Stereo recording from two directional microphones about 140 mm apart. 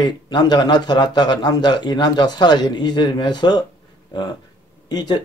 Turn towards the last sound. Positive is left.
turn(degrees=30)  # may be behind; listen again after turning